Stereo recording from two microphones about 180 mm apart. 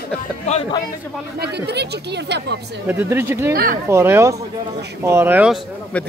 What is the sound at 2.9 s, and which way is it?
Speech, 10° right (ahead or behind).